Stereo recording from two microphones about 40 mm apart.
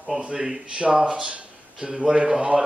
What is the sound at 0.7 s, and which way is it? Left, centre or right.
Speech, right.